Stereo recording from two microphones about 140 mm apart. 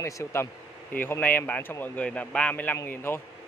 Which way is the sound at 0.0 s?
20° left (ahead or behind).